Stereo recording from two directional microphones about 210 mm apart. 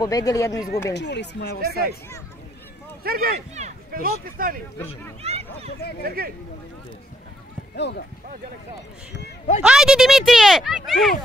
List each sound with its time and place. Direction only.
0.0 s speech: 15° left (ahead or behind)
0.9 s speech: 55° left (ahead or behind)
3.0 s speech: 45° right (ahead or behind)
4.7 s speech: 10° left (ahead or behind)
5.2 s speech: 30° right (ahead or behind)
5.8 s speech: 50° left (ahead or behind)
6.0 s speech: 45° right (ahead or behind)
7.7 s speech: 55° left (ahead or behind)
9.6 s speech: 5° right (ahead or behind)